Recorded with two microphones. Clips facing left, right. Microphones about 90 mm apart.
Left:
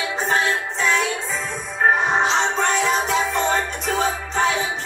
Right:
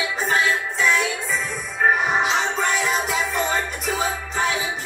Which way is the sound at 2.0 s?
30° left (ahead or behind).